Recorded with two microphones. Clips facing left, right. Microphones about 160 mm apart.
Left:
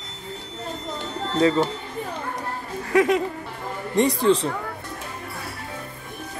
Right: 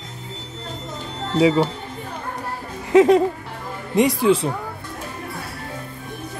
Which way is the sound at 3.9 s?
10° right (ahead or behind).